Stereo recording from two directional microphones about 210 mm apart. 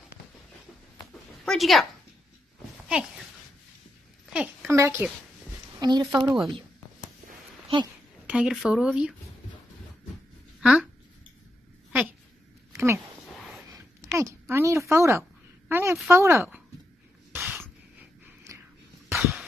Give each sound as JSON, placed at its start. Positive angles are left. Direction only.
{"t": 1.4, "sound": "speech", "side_deg": 0}
{"t": 4.3, "sound": "a child's voice", "side_deg": -5}
{"t": 6.1, "sound": "speech", "side_deg": 0}
{"t": 7.6, "sound": "speech", "side_deg": -20}
{"t": 8.3, "sound": "speech", "side_deg": -5}
{"t": 10.6, "sound": "speech", "side_deg": -5}
{"t": 12.7, "sound": "a sound", "side_deg": -10}
{"t": 14.0, "sound": "a sound", "side_deg": -10}
{"t": 16.1, "sound": "speech", "side_deg": -10}
{"t": 17.4, "sound": "a sound", "side_deg": -5}
{"t": 18.5, "sound": "whispering", "side_deg": -15}
{"t": 19.1, "sound": "a sound", "side_deg": -5}